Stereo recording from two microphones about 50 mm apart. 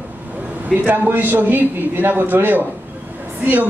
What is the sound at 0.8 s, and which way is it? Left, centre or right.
A man's voice, right.